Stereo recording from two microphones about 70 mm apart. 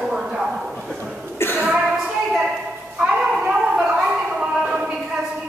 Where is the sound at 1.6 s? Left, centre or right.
Centre.